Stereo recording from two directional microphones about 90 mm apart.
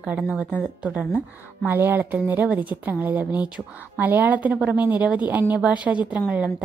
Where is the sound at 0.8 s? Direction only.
15° right (ahead or behind).